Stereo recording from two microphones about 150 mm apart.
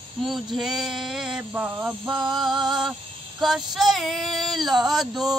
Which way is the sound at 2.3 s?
Centre (ahead or behind).